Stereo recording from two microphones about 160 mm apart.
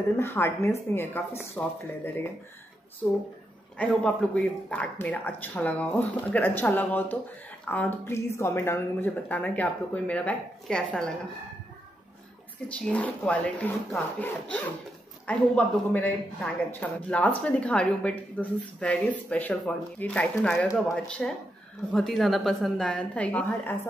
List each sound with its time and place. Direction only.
0.2 s speech: 15° left (ahead or behind)
3.7 s speech: 5° left (ahead or behind)
12.6 s a woman's voice: 5° left (ahead or behind)